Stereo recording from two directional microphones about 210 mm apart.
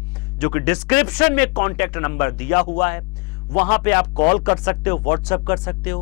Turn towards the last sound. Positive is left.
turn(degrees=10)  # may be behind; listen again after turning